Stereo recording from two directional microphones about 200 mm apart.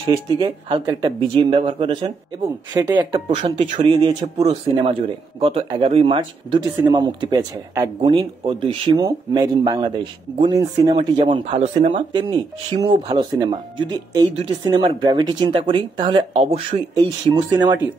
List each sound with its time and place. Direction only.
0.0 s speech: 20° right (ahead or behind)